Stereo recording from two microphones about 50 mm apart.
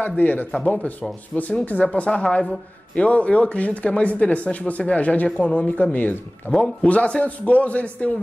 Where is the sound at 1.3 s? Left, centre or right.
Centre.